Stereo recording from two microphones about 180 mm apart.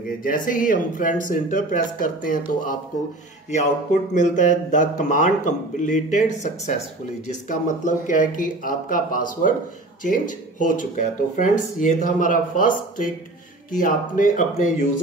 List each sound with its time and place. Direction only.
0.2 s speech: 50° left (ahead or behind)